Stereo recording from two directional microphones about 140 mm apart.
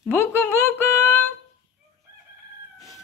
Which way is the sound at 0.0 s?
15° left (ahead or behind).